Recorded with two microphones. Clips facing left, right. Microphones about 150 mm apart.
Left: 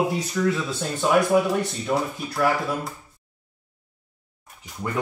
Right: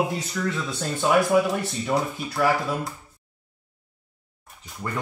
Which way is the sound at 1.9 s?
Centre (ahead or behind).